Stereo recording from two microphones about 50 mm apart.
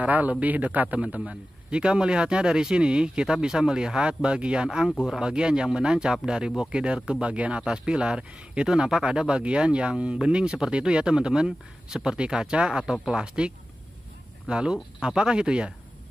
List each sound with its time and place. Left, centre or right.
0.0 s a man's voice: right
14.5 s a man's voice: centre